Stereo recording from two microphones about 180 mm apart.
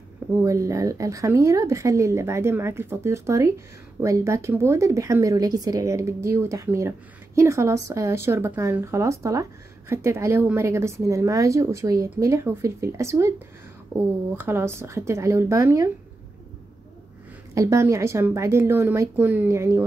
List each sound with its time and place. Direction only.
0.4 s speech: 15° right (ahead or behind)
17.6 s speech: 15° right (ahead or behind)